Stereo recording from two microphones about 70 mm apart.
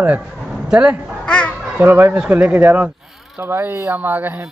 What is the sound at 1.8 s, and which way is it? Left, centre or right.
Speech, right.